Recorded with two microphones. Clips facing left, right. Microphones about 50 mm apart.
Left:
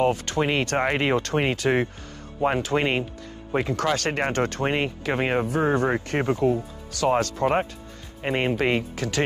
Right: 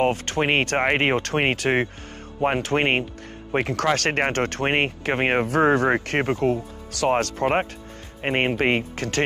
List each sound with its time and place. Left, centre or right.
0.0 s speech: right